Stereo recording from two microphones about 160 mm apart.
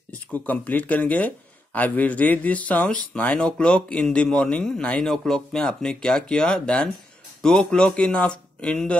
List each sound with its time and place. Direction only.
0.3 s speech: 10° left (ahead or behind)